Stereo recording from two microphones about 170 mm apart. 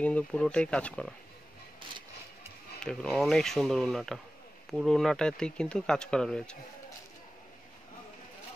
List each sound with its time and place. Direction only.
0.0 s speech: 5° left (ahead or behind)
2.8 s speech: 5° left (ahead or behind)